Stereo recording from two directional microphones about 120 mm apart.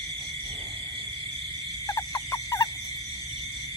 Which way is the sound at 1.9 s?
20° left (ahead or behind).